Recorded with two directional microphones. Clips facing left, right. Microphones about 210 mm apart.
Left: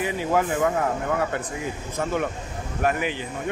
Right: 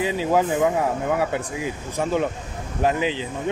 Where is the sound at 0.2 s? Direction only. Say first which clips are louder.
Right 2 dB; 15° right (ahead or behind).